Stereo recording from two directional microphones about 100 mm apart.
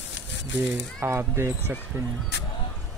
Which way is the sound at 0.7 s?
25° right (ahead or behind).